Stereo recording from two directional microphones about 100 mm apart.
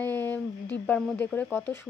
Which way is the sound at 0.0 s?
20° left (ahead or behind).